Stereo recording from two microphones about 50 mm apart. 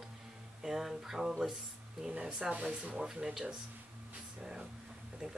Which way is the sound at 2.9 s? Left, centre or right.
Centre.